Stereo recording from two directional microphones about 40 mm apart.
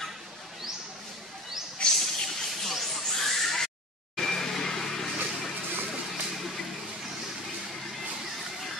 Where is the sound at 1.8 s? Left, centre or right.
Left.